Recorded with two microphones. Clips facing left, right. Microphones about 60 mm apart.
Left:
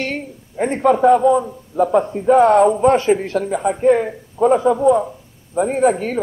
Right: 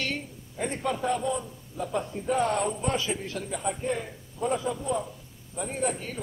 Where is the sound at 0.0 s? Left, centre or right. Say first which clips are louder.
Left 8 dB; left.